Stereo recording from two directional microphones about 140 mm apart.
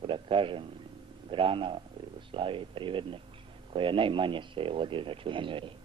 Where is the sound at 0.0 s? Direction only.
40° right (ahead or behind).